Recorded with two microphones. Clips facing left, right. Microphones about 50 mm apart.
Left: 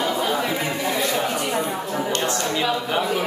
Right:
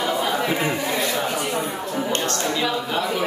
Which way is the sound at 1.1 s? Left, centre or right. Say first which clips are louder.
Left 1 dB; centre.